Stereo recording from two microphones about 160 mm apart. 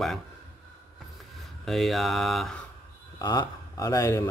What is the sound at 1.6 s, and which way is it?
Speech, centre (ahead or behind).